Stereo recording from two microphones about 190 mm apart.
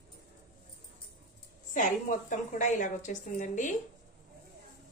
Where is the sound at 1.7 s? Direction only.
40° left (ahead or behind).